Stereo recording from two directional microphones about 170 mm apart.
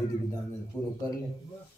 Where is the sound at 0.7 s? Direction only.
15° right (ahead or behind).